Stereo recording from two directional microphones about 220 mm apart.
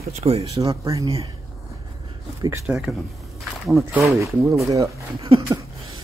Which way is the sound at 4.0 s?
15° right (ahead or behind).